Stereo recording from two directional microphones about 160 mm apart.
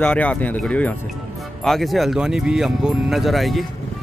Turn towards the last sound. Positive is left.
turn(degrees=0)  # may be behind; listen again after turning